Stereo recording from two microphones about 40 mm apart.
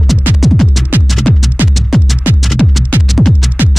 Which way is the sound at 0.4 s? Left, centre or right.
Centre.